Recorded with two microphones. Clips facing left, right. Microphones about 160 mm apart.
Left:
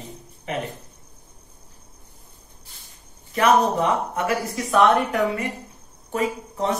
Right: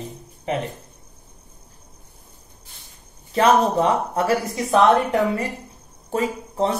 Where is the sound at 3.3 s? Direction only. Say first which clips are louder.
Right 2 dB; 30° right (ahead or behind).